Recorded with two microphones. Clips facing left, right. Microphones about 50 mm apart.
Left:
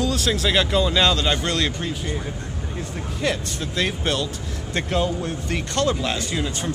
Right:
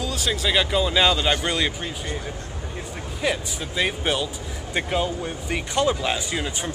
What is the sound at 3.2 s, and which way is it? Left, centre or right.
Speech, centre.